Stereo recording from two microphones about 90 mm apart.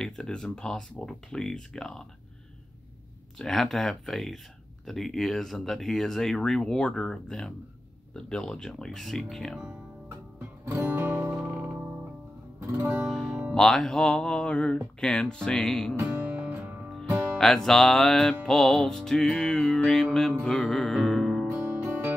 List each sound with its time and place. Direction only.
0.0 s speech: 5° left (ahead or behind)
3.3 s music: 5° left (ahead or behind)
10.6 s music: 25° right (ahead or behind)
13.0 s music: centre (ahead or behind)
13.3 s music: 15° right (ahead or behind)
13.6 s speech: 5° left (ahead or behind)
16.0 s music: 20° right (ahead or behind)
17.4 s music: 5° left (ahead or behind)
21.6 s music: 25° right (ahead or behind)